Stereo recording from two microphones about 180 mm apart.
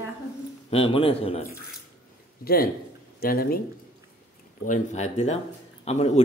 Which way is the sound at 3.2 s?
55° left (ahead or behind).